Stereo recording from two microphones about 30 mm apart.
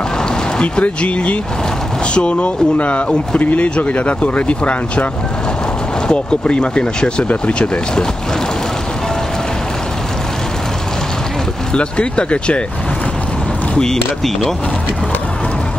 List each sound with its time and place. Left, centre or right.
0.6 s speech: left
3.3 s speech: left
6.0 s speech: left
11.7 s speech: left